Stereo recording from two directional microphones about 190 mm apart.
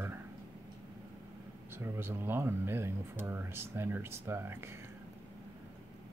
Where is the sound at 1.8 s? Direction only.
10° right (ahead or behind).